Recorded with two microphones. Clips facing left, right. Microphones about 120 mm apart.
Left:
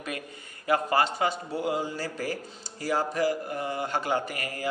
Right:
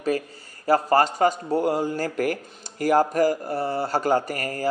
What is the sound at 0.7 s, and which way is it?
A man's voice, 40° right (ahead or behind).